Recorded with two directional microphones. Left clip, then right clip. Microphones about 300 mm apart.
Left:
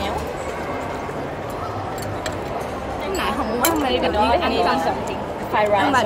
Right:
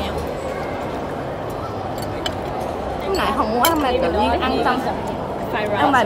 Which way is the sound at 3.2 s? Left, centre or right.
Centre.